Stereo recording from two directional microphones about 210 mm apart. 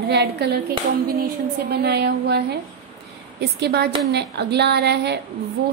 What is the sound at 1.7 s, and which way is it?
A woman's voice, 50° right (ahead or behind).